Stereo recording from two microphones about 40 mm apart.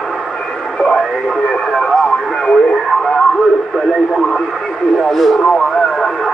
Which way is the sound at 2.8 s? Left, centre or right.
Centre.